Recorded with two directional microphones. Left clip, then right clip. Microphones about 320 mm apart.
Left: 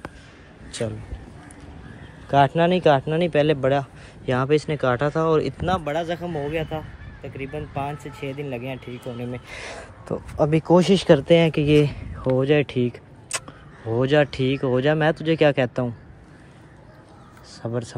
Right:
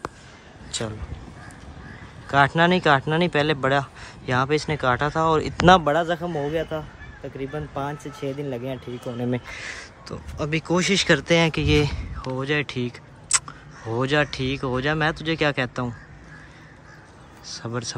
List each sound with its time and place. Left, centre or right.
2.3 s speech: centre
5.9 s speech: centre
9.5 s speech: centre
17.6 s speech: centre